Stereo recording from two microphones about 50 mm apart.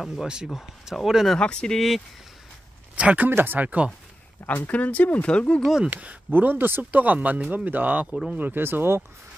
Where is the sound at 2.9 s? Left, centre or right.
Right.